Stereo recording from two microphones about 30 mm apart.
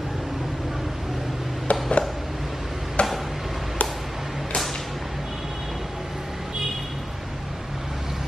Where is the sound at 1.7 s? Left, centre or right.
Left.